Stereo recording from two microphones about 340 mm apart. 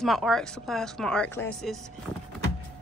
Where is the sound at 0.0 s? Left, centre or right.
Centre.